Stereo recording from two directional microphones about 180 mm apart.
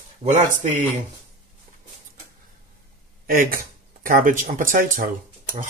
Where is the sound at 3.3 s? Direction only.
55° right (ahead or behind).